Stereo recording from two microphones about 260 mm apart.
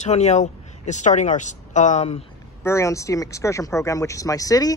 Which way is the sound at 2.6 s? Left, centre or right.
Centre.